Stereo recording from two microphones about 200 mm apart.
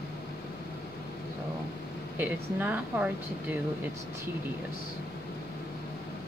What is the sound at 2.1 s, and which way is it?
Speech, 10° right (ahead or behind).